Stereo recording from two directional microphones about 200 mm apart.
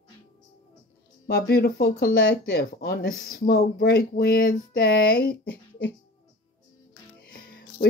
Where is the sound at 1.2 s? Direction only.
55° left (ahead or behind).